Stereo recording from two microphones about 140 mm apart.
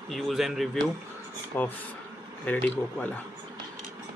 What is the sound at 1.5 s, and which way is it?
Speech, 15° left (ahead or behind).